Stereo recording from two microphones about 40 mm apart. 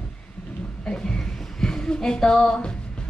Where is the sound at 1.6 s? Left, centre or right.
Centre.